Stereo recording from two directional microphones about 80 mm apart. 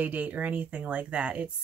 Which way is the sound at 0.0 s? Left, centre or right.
Centre.